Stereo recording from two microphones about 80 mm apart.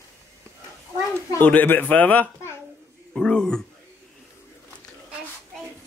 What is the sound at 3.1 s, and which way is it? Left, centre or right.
Speech, centre.